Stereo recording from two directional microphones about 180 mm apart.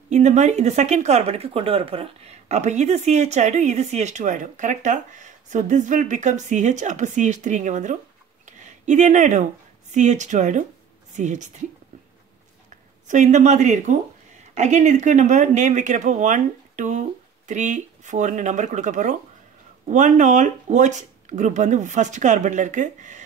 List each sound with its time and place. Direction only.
0.1 s speech: 40° right (ahead or behind)
13.1 s speech: 40° right (ahead or behind)